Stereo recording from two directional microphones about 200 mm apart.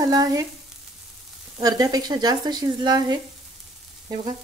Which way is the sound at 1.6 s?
20° right (ahead or behind).